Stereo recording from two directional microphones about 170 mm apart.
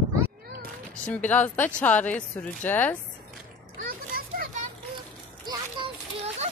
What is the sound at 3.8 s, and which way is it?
Children playing, 55° right (ahead or behind).